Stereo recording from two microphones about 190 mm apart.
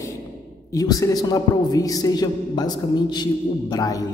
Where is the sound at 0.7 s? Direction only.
20° left (ahead or behind).